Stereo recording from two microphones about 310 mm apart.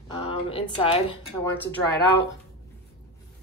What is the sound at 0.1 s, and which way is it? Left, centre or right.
Speech, centre.